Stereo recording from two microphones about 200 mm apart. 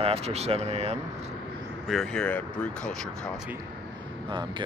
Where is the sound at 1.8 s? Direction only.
Centre (ahead or behind).